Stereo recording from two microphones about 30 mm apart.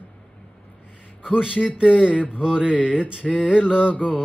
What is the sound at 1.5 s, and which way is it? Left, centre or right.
Mantra, left.